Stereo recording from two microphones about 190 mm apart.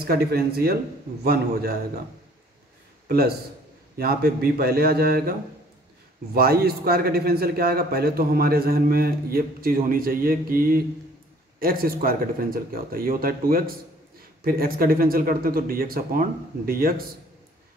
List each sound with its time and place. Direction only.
0.0 s a man's voice: 55° right (ahead or behind)
3.1 s a man's voice: 55° right (ahead or behind)
6.3 s a man's voice: 55° right (ahead or behind)